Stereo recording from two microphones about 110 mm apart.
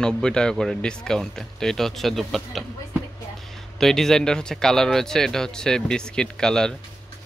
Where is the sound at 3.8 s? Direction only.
5° left (ahead or behind).